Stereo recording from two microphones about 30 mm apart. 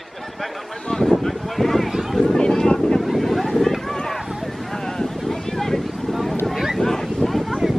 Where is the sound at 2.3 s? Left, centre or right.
Left.